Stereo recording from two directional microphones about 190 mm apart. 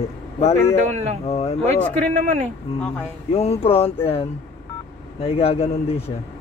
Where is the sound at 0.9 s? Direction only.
40° right (ahead or behind).